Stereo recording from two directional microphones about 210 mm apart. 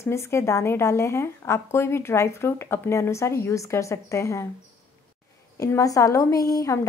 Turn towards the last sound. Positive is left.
turn(degrees=15)  # may be behind; listen again after turning